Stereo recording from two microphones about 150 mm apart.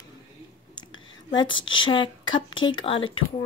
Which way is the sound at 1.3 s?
35° left (ahead or behind).